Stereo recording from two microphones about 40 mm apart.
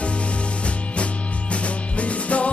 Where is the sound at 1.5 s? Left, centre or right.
Left.